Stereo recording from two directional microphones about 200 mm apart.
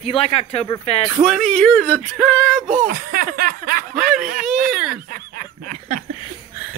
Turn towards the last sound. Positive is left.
turn(degrees=-50)  # may be behind; listen again after turning